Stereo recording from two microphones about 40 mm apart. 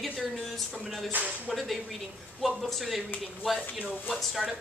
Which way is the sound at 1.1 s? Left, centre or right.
Right.